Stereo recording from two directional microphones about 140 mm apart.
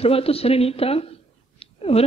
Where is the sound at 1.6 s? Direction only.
45° left (ahead or behind).